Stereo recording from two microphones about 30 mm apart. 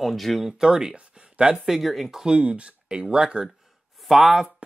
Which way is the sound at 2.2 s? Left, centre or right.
Right.